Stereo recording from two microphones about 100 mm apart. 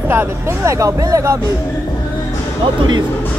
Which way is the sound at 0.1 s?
25° right (ahead or behind).